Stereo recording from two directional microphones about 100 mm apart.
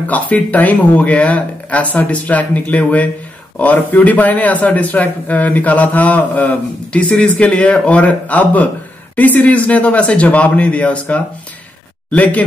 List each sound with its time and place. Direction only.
0.0 s a man's voice: 15° left (ahead or behind)